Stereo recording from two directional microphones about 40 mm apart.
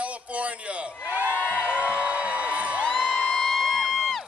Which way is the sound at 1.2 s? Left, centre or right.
Left.